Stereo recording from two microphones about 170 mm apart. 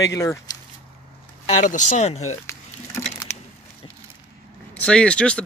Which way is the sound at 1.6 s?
45° left (ahead or behind).